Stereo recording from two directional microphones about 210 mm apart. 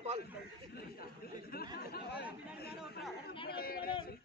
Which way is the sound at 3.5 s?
45° left (ahead or behind).